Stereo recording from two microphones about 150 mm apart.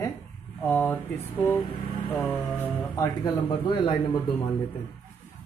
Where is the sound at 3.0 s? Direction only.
25° left (ahead or behind).